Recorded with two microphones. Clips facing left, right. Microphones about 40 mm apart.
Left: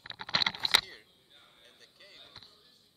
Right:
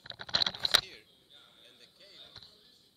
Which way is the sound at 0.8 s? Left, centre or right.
Centre.